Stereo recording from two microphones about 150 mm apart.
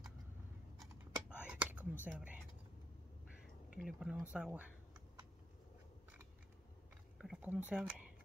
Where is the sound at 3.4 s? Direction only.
5° right (ahead or behind).